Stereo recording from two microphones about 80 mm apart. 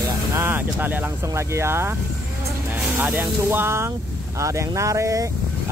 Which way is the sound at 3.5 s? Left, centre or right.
Right.